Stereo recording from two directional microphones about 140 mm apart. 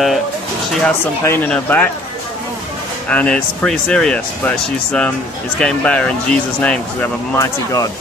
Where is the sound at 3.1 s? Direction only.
10° left (ahead or behind).